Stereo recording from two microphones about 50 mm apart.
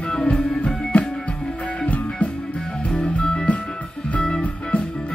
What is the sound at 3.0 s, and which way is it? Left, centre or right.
Music, centre.